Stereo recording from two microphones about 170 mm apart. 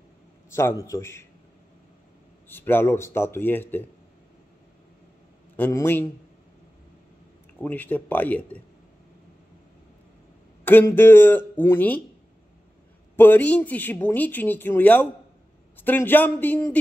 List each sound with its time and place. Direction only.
0.5 s speech: 15° left (ahead or behind)
2.5 s speech: 10° left (ahead or behind)
5.6 s speech: 15° left (ahead or behind)
7.6 s speech: 10° left (ahead or behind)
10.6 s speech: 10° left (ahead or behind)
13.1 s speech: 10° left (ahead or behind)